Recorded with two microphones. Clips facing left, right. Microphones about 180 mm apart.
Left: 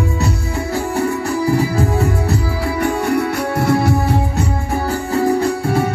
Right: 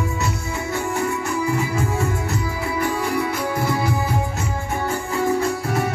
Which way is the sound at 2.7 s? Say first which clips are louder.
Left 5 dB; 65° left (ahead or behind).